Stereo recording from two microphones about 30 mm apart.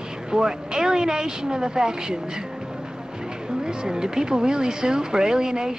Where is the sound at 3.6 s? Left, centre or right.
Right.